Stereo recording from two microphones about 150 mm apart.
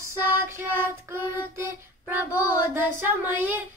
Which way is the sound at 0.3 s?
15° right (ahead or behind).